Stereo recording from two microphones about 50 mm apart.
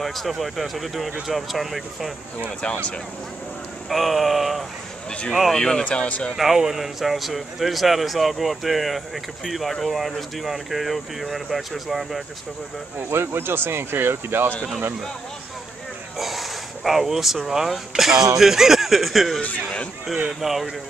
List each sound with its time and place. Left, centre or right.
0.0 s a man's voice: centre
2.6 s speech: left
3.9 s a man's voice: centre
5.6 s speech: centre
5.9 s speech: left
6.3 s a man's voice: centre
13.1 s speech: right
16.2 s a sound: centre
17.5 s a man's voice: centre
19.4 s speech: left
20.3 s a man's voice: centre